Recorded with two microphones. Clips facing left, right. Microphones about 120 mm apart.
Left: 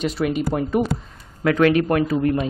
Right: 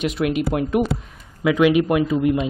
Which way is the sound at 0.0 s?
5° right (ahead or behind).